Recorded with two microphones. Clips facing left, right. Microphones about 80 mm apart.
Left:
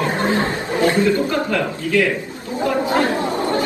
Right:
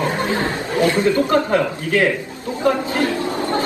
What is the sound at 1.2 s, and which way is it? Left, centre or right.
Speech, right.